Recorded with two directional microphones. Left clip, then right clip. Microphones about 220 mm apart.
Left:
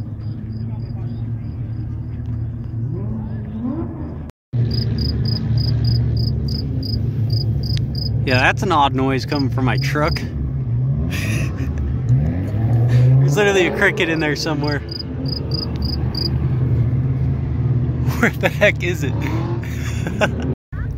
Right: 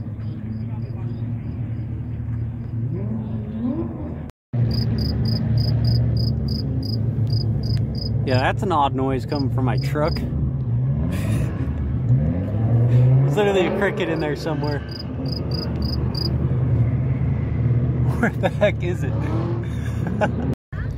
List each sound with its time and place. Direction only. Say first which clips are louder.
4.6 s cricket: left 2 dB; 40° right (ahead or behind)
7.6 s cricket: left 3 dB; centre (ahead or behind)
11.1 s a sound: left 6 dB; centre (ahead or behind)
12.8 s speech: left 3 dB; centre (ahead or behind)
18.0 s speech: left 5 dB; 5° left (ahead or behind)
20.0 s a sound: left 3 dB; 10° left (ahead or behind)